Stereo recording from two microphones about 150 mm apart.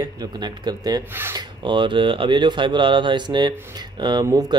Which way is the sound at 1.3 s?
30° right (ahead or behind).